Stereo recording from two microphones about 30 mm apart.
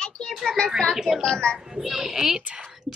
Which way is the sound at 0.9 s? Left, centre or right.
Centre.